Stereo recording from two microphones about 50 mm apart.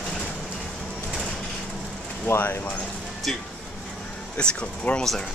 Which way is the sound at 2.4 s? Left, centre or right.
Left.